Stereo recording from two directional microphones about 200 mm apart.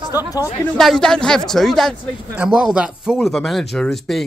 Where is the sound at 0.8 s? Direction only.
Centre (ahead or behind).